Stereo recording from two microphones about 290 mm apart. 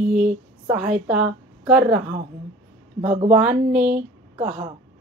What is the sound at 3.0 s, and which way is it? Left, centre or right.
A woman's voice, right.